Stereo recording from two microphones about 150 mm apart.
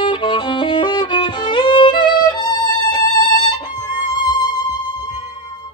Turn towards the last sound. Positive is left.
turn(degrees=30)  # may be behind; listen again after turning